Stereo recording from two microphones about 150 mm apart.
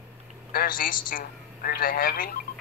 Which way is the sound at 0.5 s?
75° left (ahead or behind).